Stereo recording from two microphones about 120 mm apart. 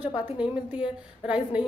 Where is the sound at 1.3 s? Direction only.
10° right (ahead or behind).